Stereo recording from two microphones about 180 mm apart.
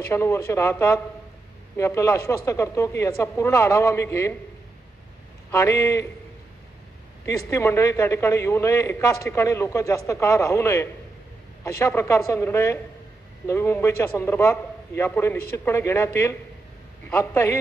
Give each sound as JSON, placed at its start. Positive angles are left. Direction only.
{"t": 0.1, "sound": "a man's voice", "side_deg": 15}
{"t": 5.5, "sound": "a man's voice", "side_deg": 15}
{"t": 7.2, "sound": "a man's voice", "side_deg": 15}